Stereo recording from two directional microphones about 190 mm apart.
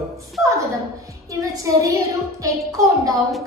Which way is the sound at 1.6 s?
20° right (ahead or behind).